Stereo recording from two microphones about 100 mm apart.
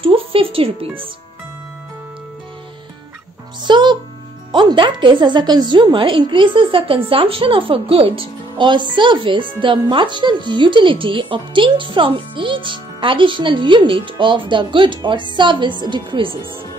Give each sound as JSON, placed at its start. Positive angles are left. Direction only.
{"t": 0.0, "sound": "speech", "side_deg": -70}
{"t": 3.6, "sound": "music", "side_deg": -50}
{"t": 4.5, "sound": "speech", "side_deg": -50}